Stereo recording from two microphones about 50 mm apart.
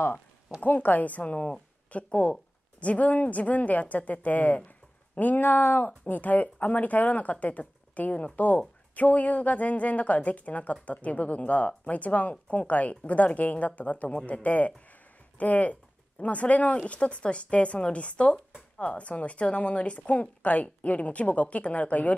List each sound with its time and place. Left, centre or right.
0.1 s a woman's voice: left